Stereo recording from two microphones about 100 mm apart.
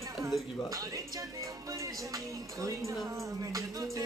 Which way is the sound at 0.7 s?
35° right (ahead or behind).